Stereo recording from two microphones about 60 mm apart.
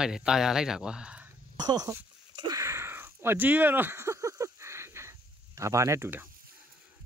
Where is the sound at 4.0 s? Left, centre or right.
Right.